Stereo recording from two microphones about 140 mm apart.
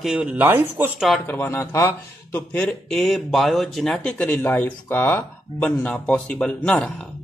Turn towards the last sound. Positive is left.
turn(degrees=5)  # may be behind; listen again after turning